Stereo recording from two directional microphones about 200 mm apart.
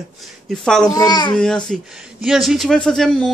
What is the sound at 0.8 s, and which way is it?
Speech, 20° left (ahead or behind).